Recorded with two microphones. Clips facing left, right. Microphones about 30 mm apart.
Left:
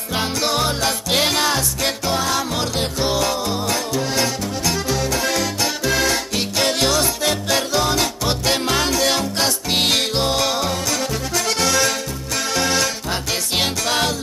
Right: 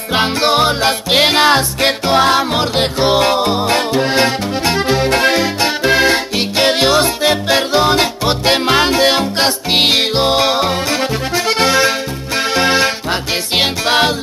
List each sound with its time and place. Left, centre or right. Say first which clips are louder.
0.1 s music: right 7 dB; right